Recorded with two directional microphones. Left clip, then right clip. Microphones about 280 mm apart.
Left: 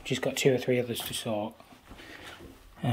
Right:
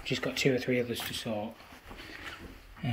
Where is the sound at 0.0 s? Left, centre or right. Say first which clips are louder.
Left 3 dB; centre.